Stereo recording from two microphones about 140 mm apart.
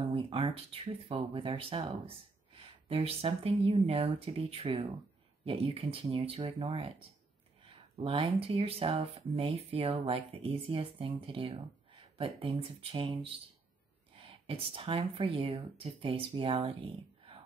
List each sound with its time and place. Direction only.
0.0 s speech: 40° right (ahead or behind)